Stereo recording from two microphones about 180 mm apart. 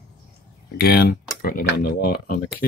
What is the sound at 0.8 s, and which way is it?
Speech, 60° left (ahead or behind).